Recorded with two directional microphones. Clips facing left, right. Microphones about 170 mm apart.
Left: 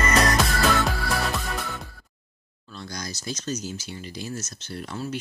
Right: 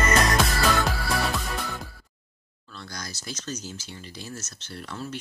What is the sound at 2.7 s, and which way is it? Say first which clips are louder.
Speech: left 4 dB; 15° left (ahead or behind).